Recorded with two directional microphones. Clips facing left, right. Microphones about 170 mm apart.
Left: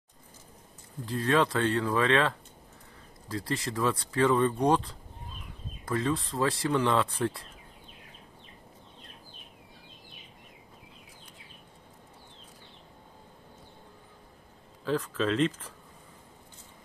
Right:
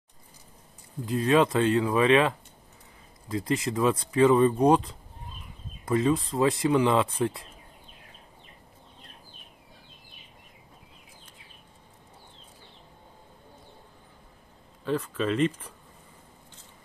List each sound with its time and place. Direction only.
1.0 s speech: 20° right (ahead or behind)
14.9 s speech: 5° right (ahead or behind)